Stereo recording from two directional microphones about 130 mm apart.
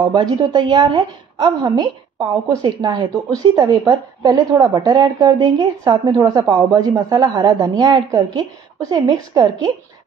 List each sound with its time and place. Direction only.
0.0 s a woman's voice: 35° right (ahead or behind)